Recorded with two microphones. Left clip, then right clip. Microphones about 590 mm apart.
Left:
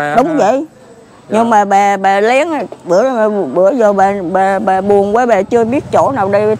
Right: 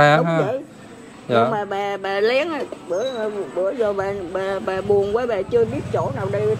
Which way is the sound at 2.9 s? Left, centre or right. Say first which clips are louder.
Left 14 dB; left.